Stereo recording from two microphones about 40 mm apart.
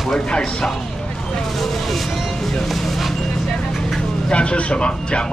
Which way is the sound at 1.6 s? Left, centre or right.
Centre.